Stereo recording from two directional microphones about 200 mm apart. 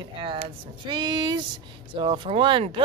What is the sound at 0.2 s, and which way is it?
A woman's voice, 25° right (ahead or behind).